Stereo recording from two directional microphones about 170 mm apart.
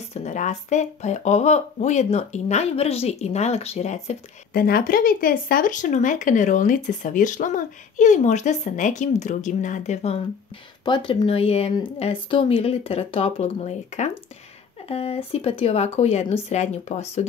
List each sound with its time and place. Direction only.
0.1 s speech: 45° left (ahead or behind)
4.6 s speech: 60° left (ahead or behind); by 17.3 s 40° left (ahead or behind)